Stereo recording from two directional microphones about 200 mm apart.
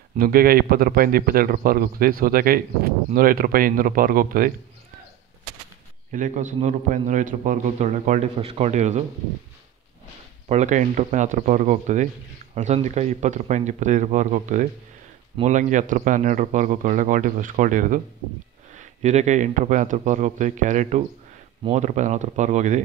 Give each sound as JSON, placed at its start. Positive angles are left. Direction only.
{"t": 0.2, "sound": "speech", "side_deg": -45}
{"t": 6.1, "sound": "a man's voice", "side_deg": -40}
{"t": 10.5, "sound": "a man's voice", "side_deg": -35}